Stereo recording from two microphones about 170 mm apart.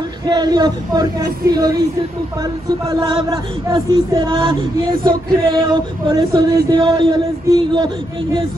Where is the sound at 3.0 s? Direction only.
30° right (ahead or behind).